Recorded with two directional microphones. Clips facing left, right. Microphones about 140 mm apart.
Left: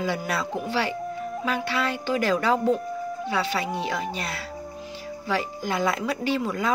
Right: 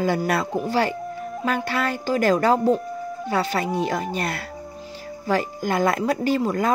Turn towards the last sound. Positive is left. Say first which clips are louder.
# right 4 dB
turn(degrees=-45)  # may be behind; listen again after turning